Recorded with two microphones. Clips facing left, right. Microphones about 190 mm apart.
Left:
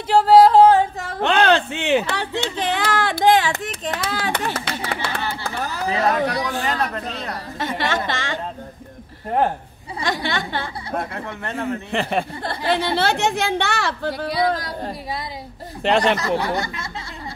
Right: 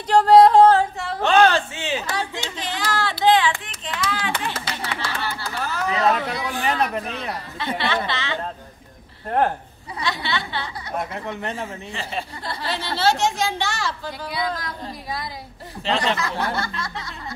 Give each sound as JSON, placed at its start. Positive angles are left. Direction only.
{"t": 0.1, "sound": "yodeling", "side_deg": 5}
{"t": 1.2, "sound": "speech", "side_deg": 60}
{"t": 2.4, "sound": "a sound", "side_deg": 60}
{"t": 4.1, "sound": "clapping", "side_deg": 45}
{"t": 4.6, "sound": "a sound", "side_deg": 60}
{"t": 5.4, "sound": "chatter", "side_deg": 35}
{"t": 6.6, "sound": "speech", "side_deg": -15}
{"t": 7.5, "sound": "a woman's voice", "side_deg": 45}
{"t": 10.0, "sound": "a woman's voice", "side_deg": 45}
{"t": 11.5, "sound": "speech", "side_deg": 65}
{"t": 14.3, "sound": "speech", "side_deg": 35}
{"t": 15.8, "sound": "speech", "side_deg": 60}
{"t": 16.3, "sound": "speech", "side_deg": 15}